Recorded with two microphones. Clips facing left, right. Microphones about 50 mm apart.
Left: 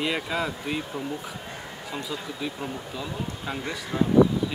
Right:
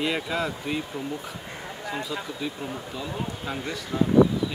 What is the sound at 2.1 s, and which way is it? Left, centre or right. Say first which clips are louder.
Speech: right 1 dB; centre.